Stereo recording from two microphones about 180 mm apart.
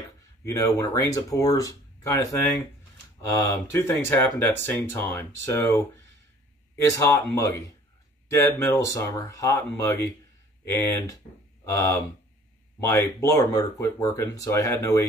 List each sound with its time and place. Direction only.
0.5 s speech: 20° left (ahead or behind)
3.7 s speech: 15° left (ahead or behind)
6.9 s speech: 20° left (ahead or behind)